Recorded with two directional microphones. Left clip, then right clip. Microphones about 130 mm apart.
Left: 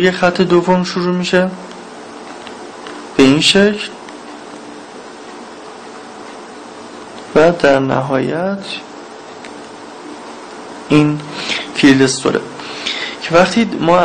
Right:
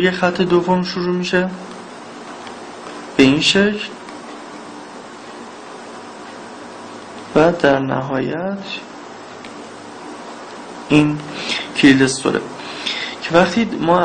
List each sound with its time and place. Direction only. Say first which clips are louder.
0.0 s speech: left 4 dB; 25° left (ahead or behind)
3.2 s speech: left 3 dB; 30° left (ahead or behind)
7.3 s speech: left 3 dB; 25° left (ahead or behind)
10.9 s speech: left 2 dB; 20° left (ahead or behind)